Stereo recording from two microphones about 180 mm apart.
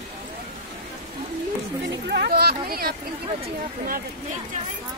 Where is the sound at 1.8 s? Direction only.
70° right (ahead or behind); by 2.9 s 55° right (ahead or behind).